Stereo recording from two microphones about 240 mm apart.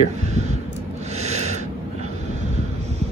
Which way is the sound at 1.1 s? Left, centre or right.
Right.